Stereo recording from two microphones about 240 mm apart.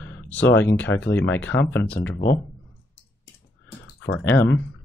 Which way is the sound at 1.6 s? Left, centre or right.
Centre.